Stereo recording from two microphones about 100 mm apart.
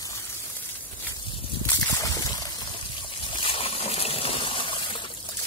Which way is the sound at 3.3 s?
60° left (ahead or behind).